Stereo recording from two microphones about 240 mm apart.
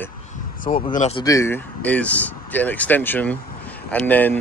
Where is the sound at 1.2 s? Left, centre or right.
Centre.